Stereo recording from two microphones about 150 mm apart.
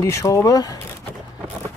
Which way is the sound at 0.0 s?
20° left (ahead or behind).